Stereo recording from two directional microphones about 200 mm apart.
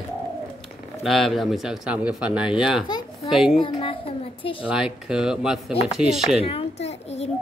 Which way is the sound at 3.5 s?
25° left (ahead or behind).